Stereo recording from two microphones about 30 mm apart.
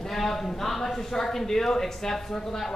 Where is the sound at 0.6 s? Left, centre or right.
Centre.